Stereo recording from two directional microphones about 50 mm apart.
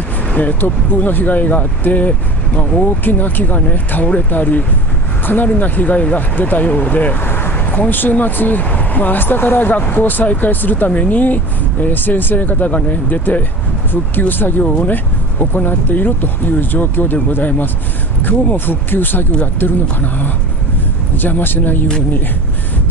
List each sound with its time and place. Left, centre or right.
0.3 s speech: left
7.3 s vehicle: left
7.9 s speech: left
14.6 s speech: left
14.9 s speech: left
21.2 s speech: left